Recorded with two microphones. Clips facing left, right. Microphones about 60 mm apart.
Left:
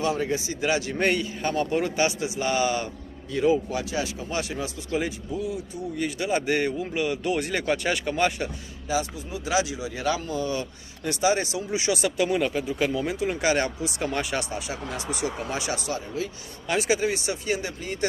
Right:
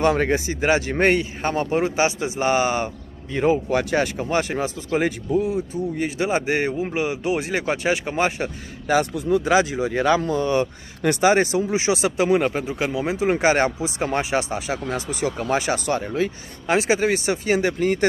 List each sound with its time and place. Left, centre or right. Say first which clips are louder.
0.0 s speech: right 6 dB; right
0.5 s a man's voice: right 5 dB; right
3.7 s a man's voice: right 8 dB; right
8.8 s speech: right 8 dB; right
9.5 s a man's voice: right 2 dB; right
12.6 s a man's voice: right 2 dB; centre
15.3 s speech: right 7 dB; right
16.6 s a man's voice: right 5 dB; right